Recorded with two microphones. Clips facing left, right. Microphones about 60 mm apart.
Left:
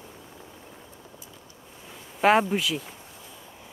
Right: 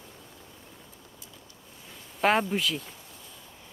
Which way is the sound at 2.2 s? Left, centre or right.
Centre.